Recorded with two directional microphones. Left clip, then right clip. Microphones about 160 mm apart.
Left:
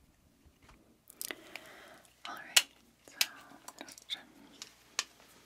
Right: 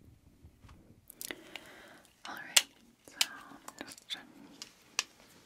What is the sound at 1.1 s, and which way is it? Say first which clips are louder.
Whispering: even; centre (ahead or behind).